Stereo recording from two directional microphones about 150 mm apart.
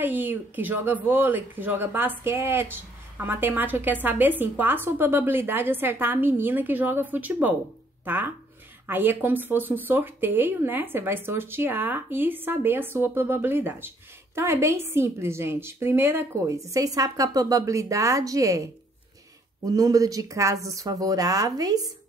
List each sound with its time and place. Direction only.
0.0 s speech: 15° right (ahead or behind)